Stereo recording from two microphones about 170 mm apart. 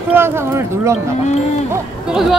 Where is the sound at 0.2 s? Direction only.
15° right (ahead or behind).